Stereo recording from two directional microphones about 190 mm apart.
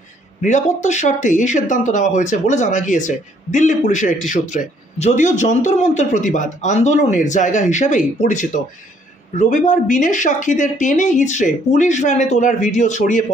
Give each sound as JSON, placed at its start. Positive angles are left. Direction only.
{"t": 0.4, "sound": "speech", "side_deg": 40}